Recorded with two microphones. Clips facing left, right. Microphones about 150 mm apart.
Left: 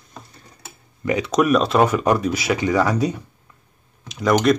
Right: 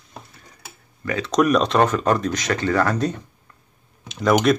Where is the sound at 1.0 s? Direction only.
15° left (ahead or behind).